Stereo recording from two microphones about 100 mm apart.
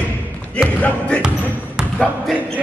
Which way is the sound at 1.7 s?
5° right (ahead or behind).